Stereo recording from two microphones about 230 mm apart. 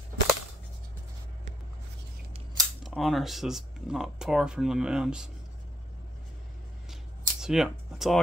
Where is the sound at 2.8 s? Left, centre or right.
Centre.